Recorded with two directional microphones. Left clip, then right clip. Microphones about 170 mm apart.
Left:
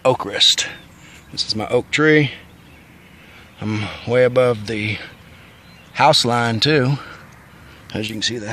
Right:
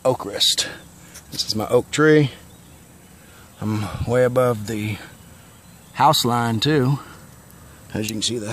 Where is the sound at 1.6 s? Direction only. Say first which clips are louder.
Even; 20° right (ahead or behind).